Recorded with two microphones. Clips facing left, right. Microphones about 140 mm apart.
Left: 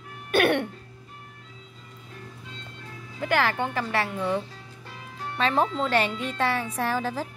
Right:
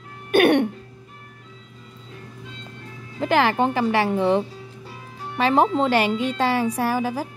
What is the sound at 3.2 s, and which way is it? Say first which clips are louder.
Speech: right 6 dB; 20° right (ahead or behind).